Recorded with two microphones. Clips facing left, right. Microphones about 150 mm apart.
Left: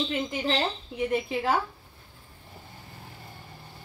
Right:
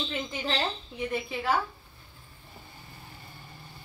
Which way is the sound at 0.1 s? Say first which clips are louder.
Left 4 dB; 15° left (ahead or behind).